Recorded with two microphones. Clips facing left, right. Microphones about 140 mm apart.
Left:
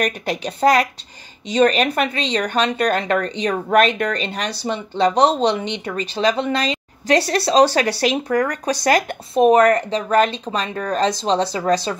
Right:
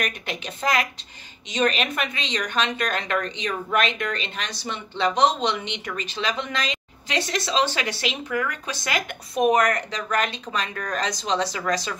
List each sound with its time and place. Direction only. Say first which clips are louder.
0.0 s speech: left 8 dB; 35° left (ahead or behind)